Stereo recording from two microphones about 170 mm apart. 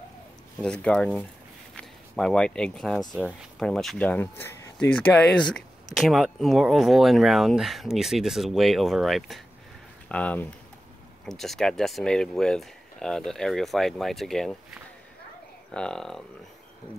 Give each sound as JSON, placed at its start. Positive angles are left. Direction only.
{"t": 0.6, "sound": "speech", "side_deg": 5}